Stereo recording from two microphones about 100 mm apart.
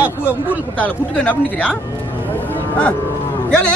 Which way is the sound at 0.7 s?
15° left (ahead or behind).